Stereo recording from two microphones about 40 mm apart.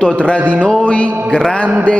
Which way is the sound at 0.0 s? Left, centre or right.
Left.